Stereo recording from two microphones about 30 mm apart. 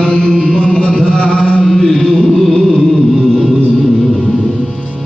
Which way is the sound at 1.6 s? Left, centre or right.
Centre.